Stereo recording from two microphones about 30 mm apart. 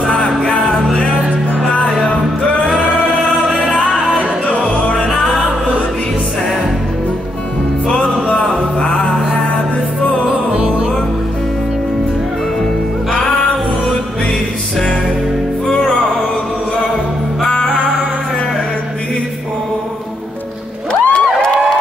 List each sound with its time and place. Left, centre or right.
0.0 s music: left
7.9 s music: left
10.5 s music: right
15.7 s music: left
21.0 s a sound: left